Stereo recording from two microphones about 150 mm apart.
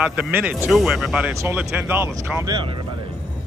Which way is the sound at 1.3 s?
20° right (ahead or behind).